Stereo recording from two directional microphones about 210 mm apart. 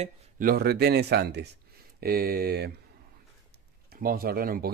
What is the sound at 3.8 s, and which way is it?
Speech, 45° right (ahead or behind).